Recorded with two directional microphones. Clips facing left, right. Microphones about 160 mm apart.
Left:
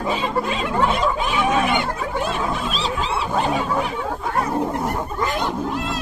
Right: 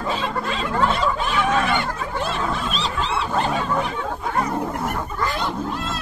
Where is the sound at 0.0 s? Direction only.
20° left (ahead or behind); by 4.6 s centre (ahead or behind).